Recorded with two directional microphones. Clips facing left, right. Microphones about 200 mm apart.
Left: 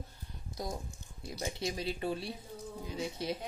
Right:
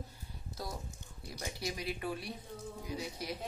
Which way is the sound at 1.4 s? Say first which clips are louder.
Left 4 dB; 25° left (ahead or behind).